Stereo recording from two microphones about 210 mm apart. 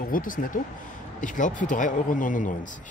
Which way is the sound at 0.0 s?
40° left (ahead or behind).